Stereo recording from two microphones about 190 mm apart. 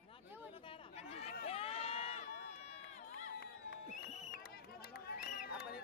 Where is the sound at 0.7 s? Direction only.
30° left (ahead or behind).